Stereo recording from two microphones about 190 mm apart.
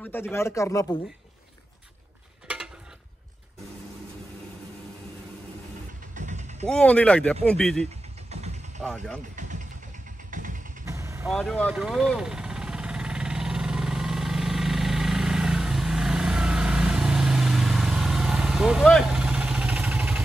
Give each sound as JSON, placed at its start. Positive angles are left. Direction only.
{"t": 0.0, "sound": "speech", "side_deg": 10}
{"t": 2.4, "sound": "mechanisms", "side_deg": -5}
{"t": 6.1, "sound": "vehicle", "side_deg": -40}
{"t": 6.7, "sound": "speech", "side_deg": 5}
{"t": 9.3, "sound": "vehicle", "side_deg": -40}
{"t": 10.9, "sound": "vehicle", "side_deg": -15}
{"t": 11.2, "sound": "speech", "side_deg": 0}
{"t": 11.6, "sound": "vehicle", "side_deg": -5}